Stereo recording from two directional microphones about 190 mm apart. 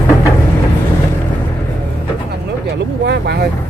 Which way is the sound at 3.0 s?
60° right (ahead or behind).